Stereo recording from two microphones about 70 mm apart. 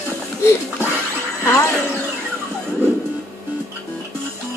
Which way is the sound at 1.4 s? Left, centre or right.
Left.